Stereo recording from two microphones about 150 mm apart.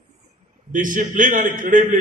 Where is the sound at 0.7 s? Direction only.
60° right (ahead or behind).